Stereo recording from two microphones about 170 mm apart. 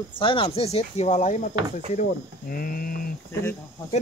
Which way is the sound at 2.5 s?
60° left (ahead or behind).